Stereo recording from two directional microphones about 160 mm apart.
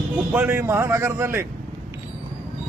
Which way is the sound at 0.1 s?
10° right (ahead or behind).